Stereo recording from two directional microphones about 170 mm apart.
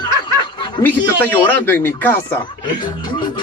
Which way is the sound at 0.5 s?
25° left (ahead or behind).